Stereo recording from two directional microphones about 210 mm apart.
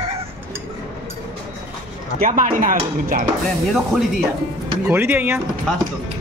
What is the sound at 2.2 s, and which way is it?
Speech, 40° right (ahead or behind).